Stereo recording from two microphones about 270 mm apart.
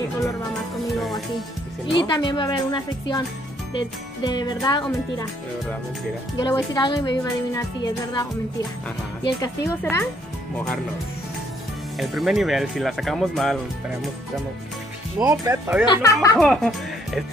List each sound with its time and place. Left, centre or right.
2.0 s speech: centre
4.2 s speech: centre
6.3 s speech: centre
9.4 s speech: centre
12.0 s speech: centre
15.1 s speech: centre
15.9 s speech: centre
16.3 s speech: centre